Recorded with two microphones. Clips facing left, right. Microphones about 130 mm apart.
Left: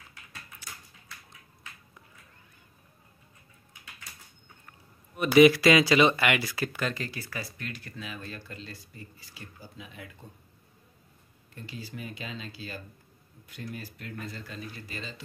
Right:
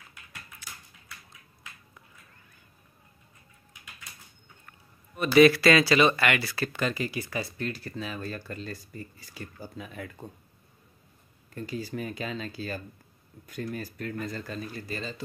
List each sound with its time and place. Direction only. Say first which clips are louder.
5.1 s speech: even; 15° left (ahead or behind)
6.8 s speech: right 3 dB; 10° right (ahead or behind)
7.6 s speech: right 6 dB; 35° right (ahead or behind)
11.5 s speech: right 7 dB; 45° right (ahead or behind)